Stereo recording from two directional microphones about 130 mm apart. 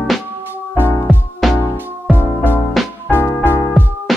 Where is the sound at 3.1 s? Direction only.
15° left (ahead or behind).